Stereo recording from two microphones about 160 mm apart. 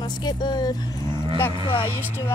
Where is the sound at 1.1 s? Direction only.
30° right (ahead or behind).